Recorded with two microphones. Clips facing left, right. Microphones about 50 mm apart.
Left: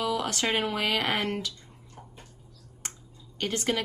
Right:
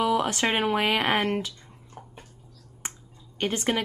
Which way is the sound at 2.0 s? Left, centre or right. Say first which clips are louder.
Right 4 dB; right.